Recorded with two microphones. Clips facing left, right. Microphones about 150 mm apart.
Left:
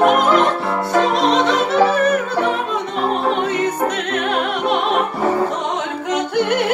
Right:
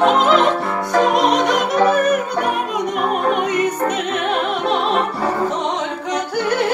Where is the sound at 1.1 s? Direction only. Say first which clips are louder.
Even; 15° right (ahead or behind).